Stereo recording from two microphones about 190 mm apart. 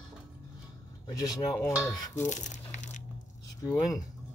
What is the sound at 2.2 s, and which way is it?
Crumpling, 40° left (ahead or behind).